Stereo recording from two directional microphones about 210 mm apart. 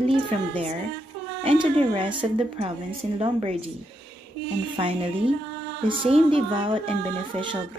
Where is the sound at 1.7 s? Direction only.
25° right (ahead or behind).